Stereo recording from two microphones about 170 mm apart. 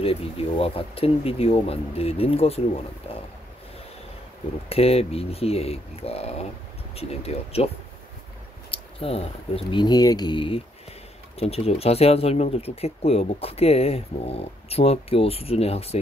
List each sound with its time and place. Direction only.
0.0 s speech: 35° left (ahead or behind)
4.6 s speech: 35° left (ahead or behind)